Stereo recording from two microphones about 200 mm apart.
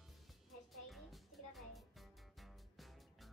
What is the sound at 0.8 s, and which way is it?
Music, centre (ahead or behind).